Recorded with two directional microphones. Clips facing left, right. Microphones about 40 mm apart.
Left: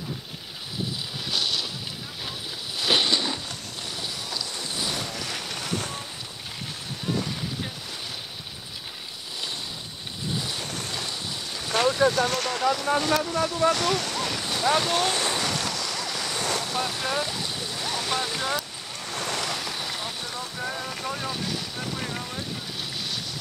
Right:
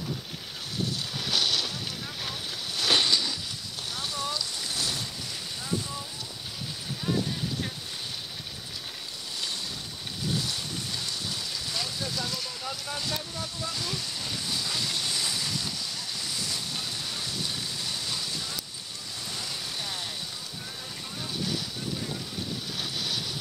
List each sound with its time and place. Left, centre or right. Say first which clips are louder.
1.3 s boat: even; centre
2.8 s a sound: left 2 dB; centre
5.1 s boat: left 5 dB; left
10.6 s vehicle: left 3 dB; left
14.4 s waves: left 10 dB; left
16.3 s stream: left 9 dB; left
19.0 s waves: left 9 dB; left
20.6 s a sound: left 9 dB; left
21.9 s vehicle: left 3 dB; left
22.8 s boat: right 1 dB; centre